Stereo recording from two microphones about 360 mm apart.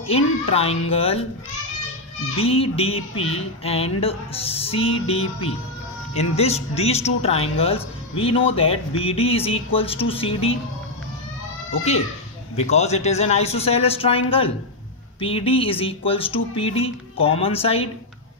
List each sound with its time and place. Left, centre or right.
0.0 s speech: centre
2.3 s speech: centre
12.5 s speech: centre